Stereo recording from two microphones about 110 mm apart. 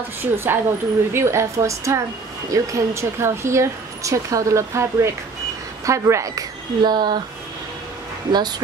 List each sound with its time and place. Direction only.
0.2 s a woman's voice: 20° right (ahead or behind); by 7.2 s 40° right (ahead or behind)
8.3 s a woman's voice: 40° right (ahead or behind)